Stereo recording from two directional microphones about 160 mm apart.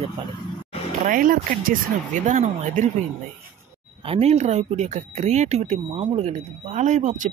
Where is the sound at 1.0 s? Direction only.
55° right (ahead or behind).